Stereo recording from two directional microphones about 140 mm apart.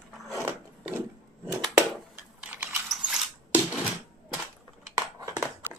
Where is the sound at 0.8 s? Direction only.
15° right (ahead or behind).